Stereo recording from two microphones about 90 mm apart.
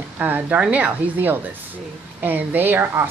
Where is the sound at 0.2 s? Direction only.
20° right (ahead or behind).